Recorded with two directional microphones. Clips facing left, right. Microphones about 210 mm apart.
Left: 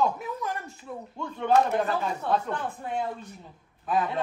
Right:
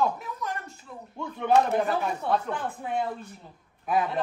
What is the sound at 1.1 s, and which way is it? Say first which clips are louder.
Speech: even; 10° right (ahead or behind).